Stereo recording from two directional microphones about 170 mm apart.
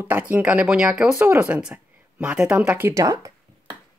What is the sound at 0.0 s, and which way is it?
A woman's voice, 10° right (ahead or behind).